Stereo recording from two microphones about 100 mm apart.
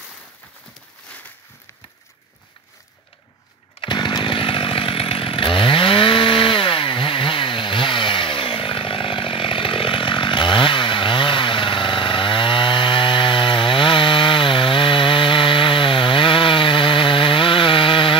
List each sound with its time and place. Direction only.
3.8 s chainsaw: 50° left (ahead or behind)